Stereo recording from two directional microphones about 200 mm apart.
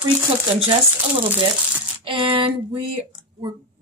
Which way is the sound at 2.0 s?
25° right (ahead or behind).